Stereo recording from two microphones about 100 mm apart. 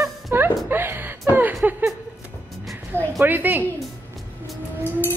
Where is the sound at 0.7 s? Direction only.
20° right (ahead or behind).